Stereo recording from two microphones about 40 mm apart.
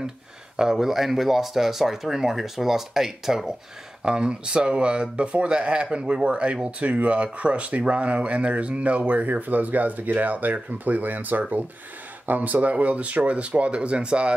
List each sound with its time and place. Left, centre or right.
0.6 s speech: centre
4.0 s speech: right